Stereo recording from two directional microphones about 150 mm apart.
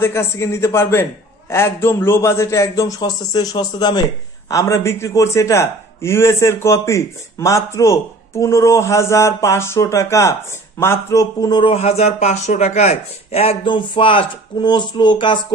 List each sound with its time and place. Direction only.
0.0 s a man's voice: 15° left (ahead or behind)
11.7 s speech: 45° left (ahead or behind)